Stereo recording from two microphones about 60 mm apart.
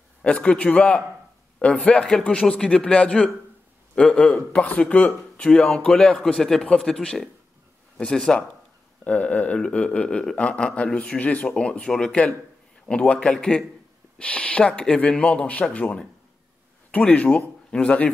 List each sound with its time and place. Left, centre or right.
0.2 s a man's voice: centre
9.0 s a man's voice: left
11.1 s a man's voice: left